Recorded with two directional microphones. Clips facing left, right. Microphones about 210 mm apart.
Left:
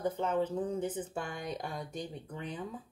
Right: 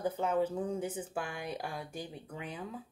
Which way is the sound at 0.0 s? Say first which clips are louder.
Even; 10° right (ahead or behind).